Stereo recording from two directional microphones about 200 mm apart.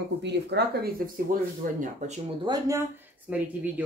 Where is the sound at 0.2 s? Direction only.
60° right (ahead or behind); by 2.1 s 40° right (ahead or behind).